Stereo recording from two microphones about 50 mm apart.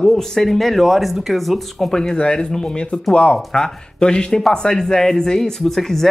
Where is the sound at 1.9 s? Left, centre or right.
Centre.